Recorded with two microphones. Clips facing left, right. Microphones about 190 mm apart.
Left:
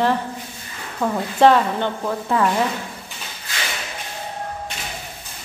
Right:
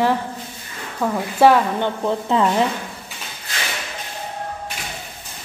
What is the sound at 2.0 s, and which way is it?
Speech, 20° right (ahead or behind).